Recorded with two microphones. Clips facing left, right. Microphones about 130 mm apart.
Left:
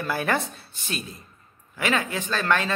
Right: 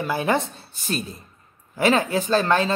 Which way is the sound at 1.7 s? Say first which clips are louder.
Right 6 dB; 35° right (ahead or behind).